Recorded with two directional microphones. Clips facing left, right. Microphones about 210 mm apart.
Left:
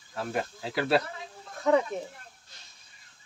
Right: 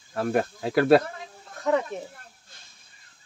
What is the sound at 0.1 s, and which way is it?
Speech, 55° right (ahead or behind).